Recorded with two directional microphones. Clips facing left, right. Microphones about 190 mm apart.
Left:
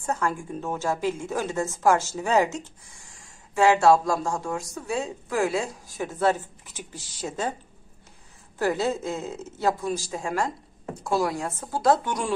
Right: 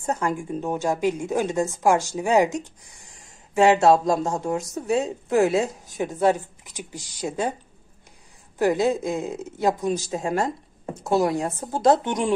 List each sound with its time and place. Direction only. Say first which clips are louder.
0.0 s a woman's voice: right 2 dB; 20° right (ahead or behind)
8.5 s a woman's voice: right 4 dB; 15° right (ahead or behind)